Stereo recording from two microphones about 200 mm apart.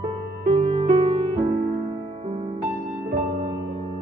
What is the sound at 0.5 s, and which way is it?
Music, 30° right (ahead or behind).